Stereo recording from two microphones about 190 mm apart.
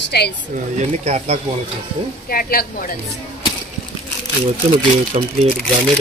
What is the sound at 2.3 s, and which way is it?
Speech, 50° left (ahead or behind).